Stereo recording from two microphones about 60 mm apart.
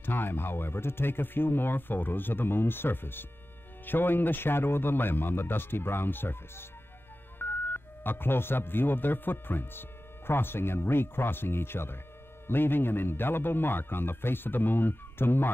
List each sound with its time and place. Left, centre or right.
0.0 s speech: left